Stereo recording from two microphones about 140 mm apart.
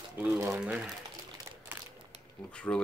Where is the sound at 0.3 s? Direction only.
20° right (ahead or behind).